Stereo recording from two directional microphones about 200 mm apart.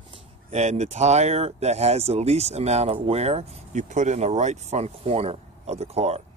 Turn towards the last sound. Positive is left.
turn(degrees=-30)  # may be behind; listen again after turning